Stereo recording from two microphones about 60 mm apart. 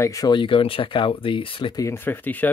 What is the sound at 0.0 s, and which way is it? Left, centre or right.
Speech, left.